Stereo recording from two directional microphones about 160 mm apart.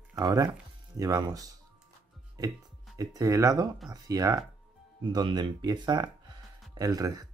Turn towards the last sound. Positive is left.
turn(degrees=-25)  # may be behind; listen again after turning